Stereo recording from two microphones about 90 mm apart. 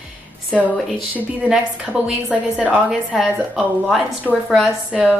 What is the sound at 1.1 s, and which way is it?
A woman's voice, 15° right (ahead or behind).